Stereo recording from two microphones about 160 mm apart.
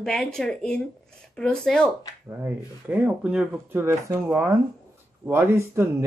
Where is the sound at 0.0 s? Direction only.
5° left (ahead or behind).